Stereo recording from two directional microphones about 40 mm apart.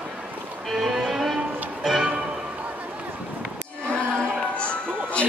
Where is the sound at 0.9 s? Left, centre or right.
Centre.